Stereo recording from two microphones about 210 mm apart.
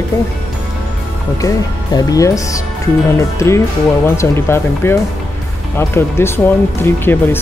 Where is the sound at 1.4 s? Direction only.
15° left (ahead or behind).